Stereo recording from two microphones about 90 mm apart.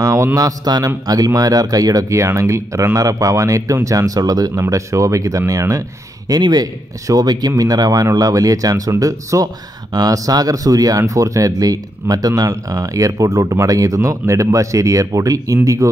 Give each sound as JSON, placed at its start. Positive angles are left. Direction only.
{"t": 0.0, "sound": "speech", "side_deg": -35}